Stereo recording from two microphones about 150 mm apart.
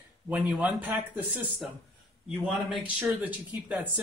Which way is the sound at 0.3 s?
10° right (ahead or behind).